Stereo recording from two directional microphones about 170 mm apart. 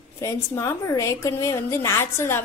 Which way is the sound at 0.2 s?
20° left (ahead or behind).